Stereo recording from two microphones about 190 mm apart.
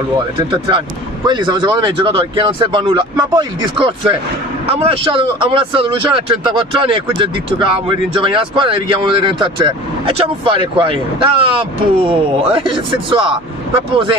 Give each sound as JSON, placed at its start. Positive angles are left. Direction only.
{"t": 0.5, "sound": "speech", "side_deg": -25}